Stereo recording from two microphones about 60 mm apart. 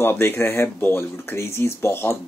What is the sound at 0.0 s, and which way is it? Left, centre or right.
Speech, left.